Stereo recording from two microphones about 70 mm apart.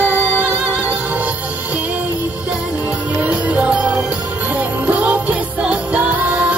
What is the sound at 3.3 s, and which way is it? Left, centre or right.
Music, centre.